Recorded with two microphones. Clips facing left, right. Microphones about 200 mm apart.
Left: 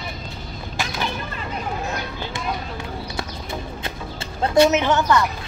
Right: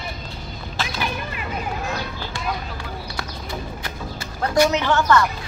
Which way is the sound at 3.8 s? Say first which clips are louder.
Left 1 dB; 25° left (ahead or behind).